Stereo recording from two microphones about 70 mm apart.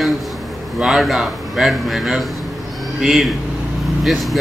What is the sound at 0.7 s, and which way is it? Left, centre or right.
Speech, centre.